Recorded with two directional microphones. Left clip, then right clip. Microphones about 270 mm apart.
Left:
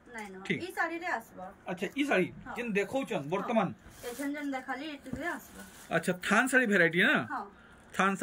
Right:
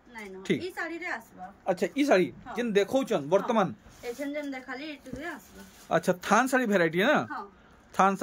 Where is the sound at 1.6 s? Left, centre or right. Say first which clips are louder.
Right 7 dB; centre.